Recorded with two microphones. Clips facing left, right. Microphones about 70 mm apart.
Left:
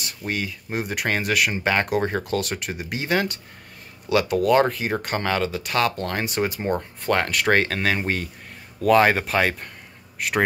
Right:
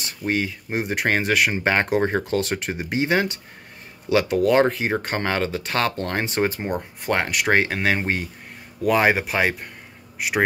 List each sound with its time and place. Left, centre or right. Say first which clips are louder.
0.0 s speech: right 4 dB; right
7.1 s speech: left 1 dB; centre
8.8 s speech: left 2 dB; centre